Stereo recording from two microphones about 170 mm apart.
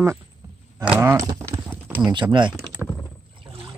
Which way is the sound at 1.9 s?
10° right (ahead or behind).